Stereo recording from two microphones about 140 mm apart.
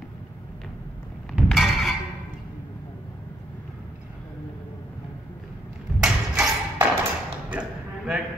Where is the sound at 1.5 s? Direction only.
Centre (ahead or behind).